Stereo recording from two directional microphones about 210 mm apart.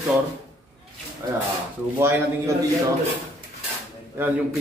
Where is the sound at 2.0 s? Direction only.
10° right (ahead or behind).